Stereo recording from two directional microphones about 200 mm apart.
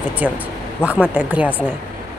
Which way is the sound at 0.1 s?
5° right (ahead or behind).